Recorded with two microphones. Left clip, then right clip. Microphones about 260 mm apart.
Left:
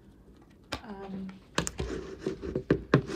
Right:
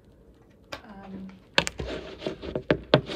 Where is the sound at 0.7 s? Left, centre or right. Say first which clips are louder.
Left 1 dB; left.